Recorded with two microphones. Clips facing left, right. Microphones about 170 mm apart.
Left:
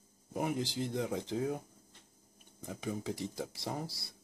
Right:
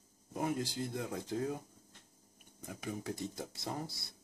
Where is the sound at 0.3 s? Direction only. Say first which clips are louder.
Left 1 dB; 10° left (ahead or behind).